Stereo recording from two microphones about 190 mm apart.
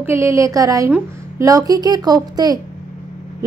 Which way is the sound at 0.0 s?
15° right (ahead or behind).